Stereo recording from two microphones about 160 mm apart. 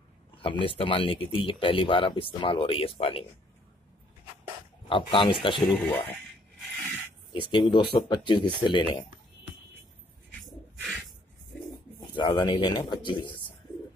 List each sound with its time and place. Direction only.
0.4 s speech: 35° left (ahead or behind)
4.8 s speech: 30° left (ahead or behind)
5.7 s speech: 10° left (ahead or behind)
7.3 s speech: 30° left (ahead or behind)
12.2 s speech: 30° left (ahead or behind)